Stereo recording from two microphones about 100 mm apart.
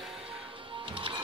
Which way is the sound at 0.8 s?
60° right (ahead or behind).